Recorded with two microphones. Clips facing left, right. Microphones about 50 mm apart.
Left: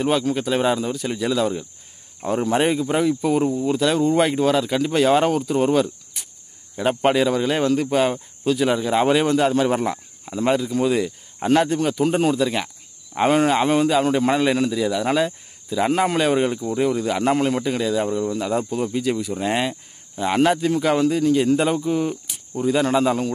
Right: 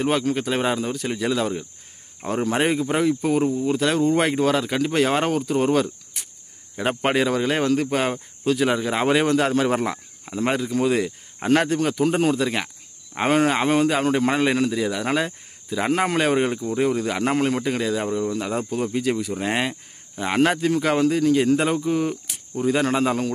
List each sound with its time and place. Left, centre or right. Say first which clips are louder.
0.0 s speech: left 1 dB; right
3.2 s a man's voice: left 1 dB; right
3.7 s a man's voice: left 2 dB; right
4.2 s speech: left 2 dB; right
12.0 s speech: left 1 dB; right
12.3 s a man's voice: left 1 dB; right
22.7 s a man's voice: left 2 dB; right